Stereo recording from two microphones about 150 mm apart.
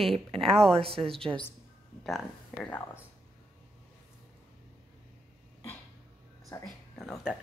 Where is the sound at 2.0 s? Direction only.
5° left (ahead or behind).